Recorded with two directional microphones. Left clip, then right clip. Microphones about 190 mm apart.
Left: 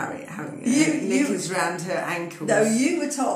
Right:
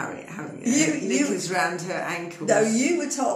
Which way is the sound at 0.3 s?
Centre (ahead or behind).